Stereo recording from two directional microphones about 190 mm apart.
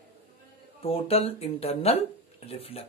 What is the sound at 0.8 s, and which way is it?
A man's voice, 30° left (ahead or behind).